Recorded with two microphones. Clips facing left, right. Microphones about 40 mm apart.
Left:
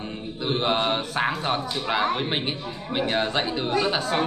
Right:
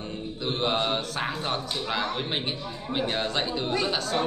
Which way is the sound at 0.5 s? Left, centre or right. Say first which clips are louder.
Left 3 dB; centre.